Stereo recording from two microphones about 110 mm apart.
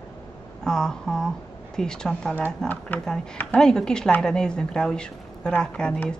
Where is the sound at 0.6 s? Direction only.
5° left (ahead or behind).